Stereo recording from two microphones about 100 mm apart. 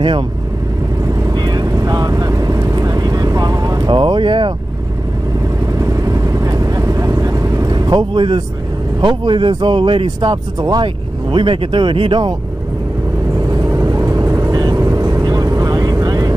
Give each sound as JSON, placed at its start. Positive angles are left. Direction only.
{"t": 1.3, "sound": "vehicle", "side_deg": -45}
{"t": 3.9, "sound": "speech", "side_deg": -55}
{"t": 5.8, "sound": "vehicle", "side_deg": -35}
{"t": 9.0, "sound": "speech", "side_deg": -50}
{"t": 10.0, "sound": "speech", "side_deg": -40}
{"t": 11.3, "sound": "speech", "side_deg": -60}
{"t": 13.5, "sound": "vehicle", "side_deg": -35}